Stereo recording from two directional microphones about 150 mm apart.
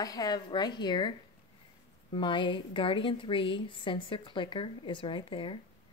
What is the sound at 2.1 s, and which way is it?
A woman's voice, 35° left (ahead or behind).